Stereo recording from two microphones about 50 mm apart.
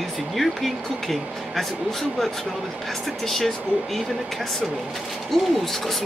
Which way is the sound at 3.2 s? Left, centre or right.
Centre.